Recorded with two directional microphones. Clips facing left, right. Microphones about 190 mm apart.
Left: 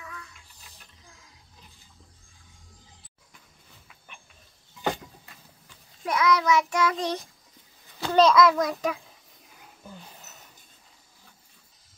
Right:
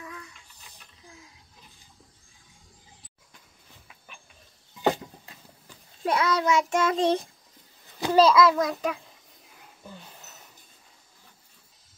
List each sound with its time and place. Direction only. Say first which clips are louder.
6.0 s child singing: left 1 dB; 30° right (ahead or behind)
8.0 s a child's voice: even; 5° right (ahead or behind)